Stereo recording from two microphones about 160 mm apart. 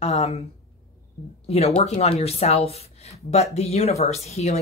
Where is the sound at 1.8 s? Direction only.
40° left (ahead or behind).